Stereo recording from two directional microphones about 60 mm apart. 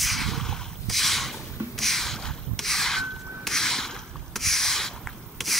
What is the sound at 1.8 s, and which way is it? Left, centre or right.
Snort, centre.